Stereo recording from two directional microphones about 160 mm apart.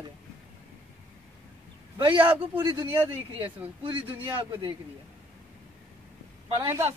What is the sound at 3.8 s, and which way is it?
Speech, 30° right (ahead or behind).